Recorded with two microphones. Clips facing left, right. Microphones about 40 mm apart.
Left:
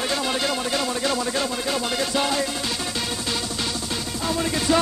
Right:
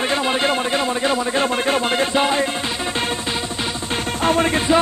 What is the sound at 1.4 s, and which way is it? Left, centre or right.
Music, right.